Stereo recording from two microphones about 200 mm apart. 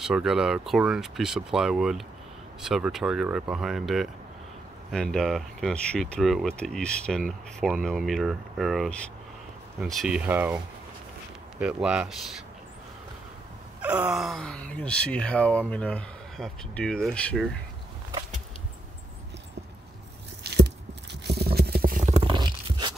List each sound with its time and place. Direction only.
0.0 s speech: 5° right (ahead or behind)
11.6 s speech: 5° right (ahead or behind)
13.7 s speech: 5° right (ahead or behind)
20.4 s a sound: 55° right (ahead or behind)
21.3 s stomach rumble: 50° right (ahead or behind); by 22.3 s 35° right (ahead or behind)
22.3 s a sound: 25° right (ahead or behind)